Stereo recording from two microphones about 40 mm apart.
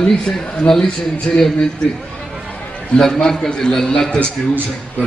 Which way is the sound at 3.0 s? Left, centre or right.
Centre.